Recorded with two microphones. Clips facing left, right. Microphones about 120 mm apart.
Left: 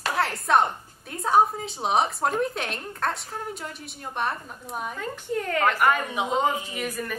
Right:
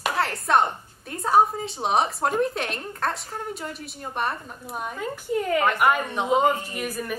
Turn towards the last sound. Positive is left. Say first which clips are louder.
# right 1 dB
turn(degrees=-5)  # may be behind; listen again after turning